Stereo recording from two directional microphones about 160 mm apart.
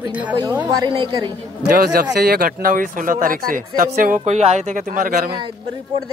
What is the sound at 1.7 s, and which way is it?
Speech, 65° right (ahead or behind).